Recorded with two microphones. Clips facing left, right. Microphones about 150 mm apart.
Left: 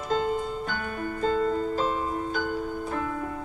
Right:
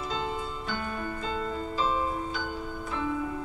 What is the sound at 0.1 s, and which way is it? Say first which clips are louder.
Music: left 10 dB; 50° left (ahead or behind).